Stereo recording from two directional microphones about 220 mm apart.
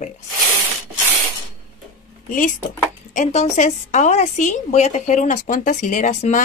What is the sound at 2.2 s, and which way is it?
Speech, 35° left (ahead or behind).